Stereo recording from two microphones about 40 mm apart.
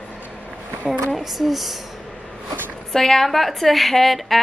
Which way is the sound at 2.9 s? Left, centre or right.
Centre.